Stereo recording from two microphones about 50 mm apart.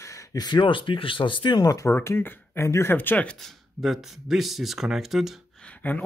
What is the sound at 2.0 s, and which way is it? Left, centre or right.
Speech, left.